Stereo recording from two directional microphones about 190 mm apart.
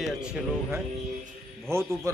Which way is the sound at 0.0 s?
5° right (ahead or behind).